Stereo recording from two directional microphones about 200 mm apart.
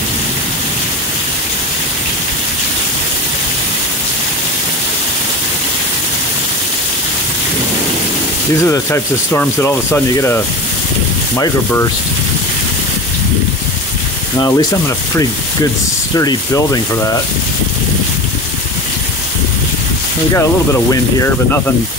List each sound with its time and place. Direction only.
8.6 s speech: 15° left (ahead or behind)
14.4 s speech: 20° left (ahead or behind)
20.3 s speech: 15° left (ahead or behind)